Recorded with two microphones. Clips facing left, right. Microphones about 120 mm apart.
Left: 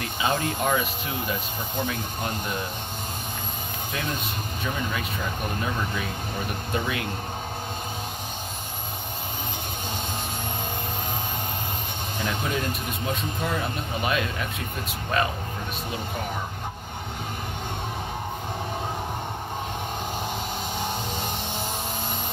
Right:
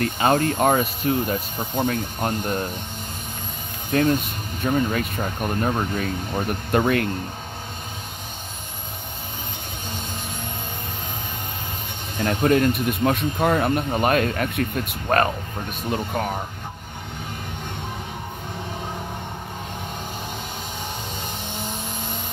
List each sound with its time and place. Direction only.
0.0 s speech: 50° right (ahead or behind)
3.9 s speech: 55° right (ahead or behind)
12.2 s speech: 55° right (ahead or behind)